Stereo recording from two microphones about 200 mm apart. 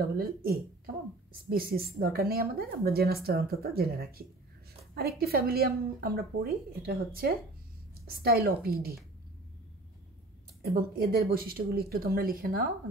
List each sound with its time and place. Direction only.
0.2 s a woman's voice: 50° right (ahead or behind)
10.6 s a woman's voice: 50° right (ahead or behind)